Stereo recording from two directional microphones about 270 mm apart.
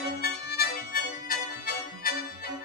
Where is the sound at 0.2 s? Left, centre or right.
Left.